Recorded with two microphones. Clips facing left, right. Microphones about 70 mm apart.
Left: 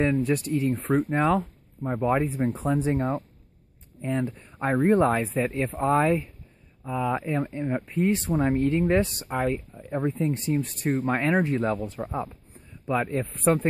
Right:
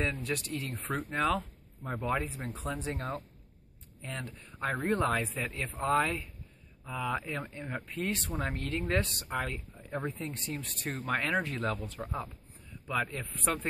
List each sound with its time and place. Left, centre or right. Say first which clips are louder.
0.0 s speech: left 10 dB; left
9.8 s speech: left 7 dB; centre
10.2 s speech: left 13 dB; left